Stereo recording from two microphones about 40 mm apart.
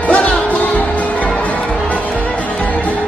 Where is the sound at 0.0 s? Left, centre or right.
Left.